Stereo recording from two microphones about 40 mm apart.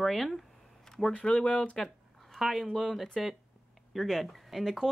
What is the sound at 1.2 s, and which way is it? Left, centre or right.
Speech, left.